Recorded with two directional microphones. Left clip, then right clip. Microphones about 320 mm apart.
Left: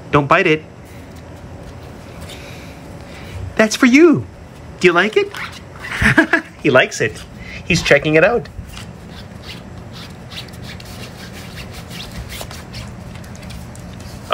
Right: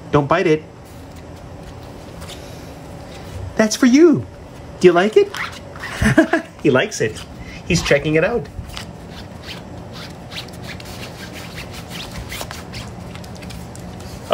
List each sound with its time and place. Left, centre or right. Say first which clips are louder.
0.1 s a woman's voice: left 3 dB; centre
3.5 s a woman's voice: left 2 dB; centre
9.5 s a sound: right 2 dB; centre